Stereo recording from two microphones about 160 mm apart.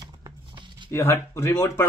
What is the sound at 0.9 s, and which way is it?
Speech, 15° left (ahead or behind).